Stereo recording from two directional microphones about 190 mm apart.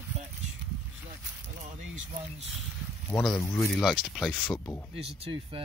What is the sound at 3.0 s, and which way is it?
Speech, 10° left (ahead or behind).